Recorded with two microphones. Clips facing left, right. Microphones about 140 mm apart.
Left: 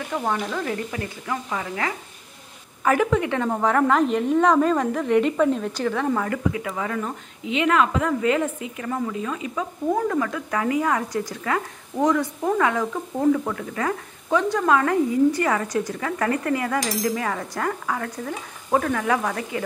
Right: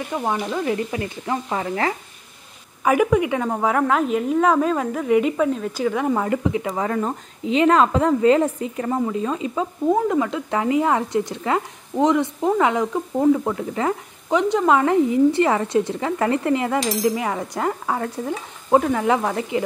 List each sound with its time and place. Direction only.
0.1 s a woman's voice: 15° right (ahead or behind)
1.2 s stir: 35° right (ahead or behind)
2.8 s a woman's voice: 10° right (ahead or behind)
6.7 s a woman's voice: 35° right (ahead or behind)